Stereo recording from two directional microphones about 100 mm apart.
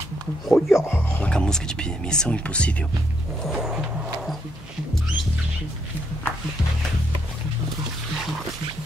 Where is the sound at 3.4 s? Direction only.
5° right (ahead or behind).